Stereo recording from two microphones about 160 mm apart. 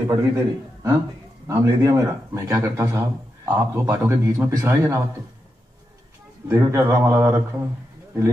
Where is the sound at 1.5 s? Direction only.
20° right (ahead or behind).